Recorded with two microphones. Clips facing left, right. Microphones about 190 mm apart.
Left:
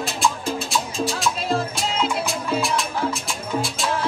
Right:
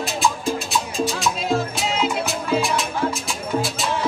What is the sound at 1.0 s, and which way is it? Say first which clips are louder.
Music: right 1 dB; centre (ahead or behind).